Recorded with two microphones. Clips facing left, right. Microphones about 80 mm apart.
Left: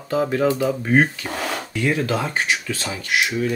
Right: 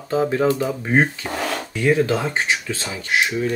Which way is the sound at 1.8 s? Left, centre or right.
Right.